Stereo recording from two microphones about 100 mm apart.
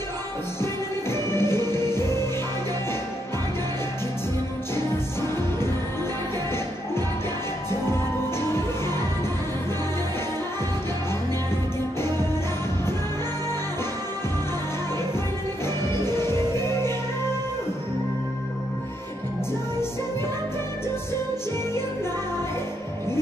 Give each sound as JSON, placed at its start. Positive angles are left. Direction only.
{"t": 1.1, "sound": "music", "side_deg": 25}
{"t": 8.4, "sound": "music", "side_deg": 25}
{"t": 16.2, "sound": "music", "side_deg": 25}